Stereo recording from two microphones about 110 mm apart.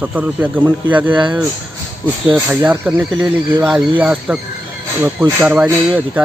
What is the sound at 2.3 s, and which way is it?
Speech, 15° right (ahead or behind).